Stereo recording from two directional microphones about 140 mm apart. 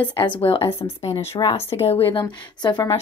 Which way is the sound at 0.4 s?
45° left (ahead or behind).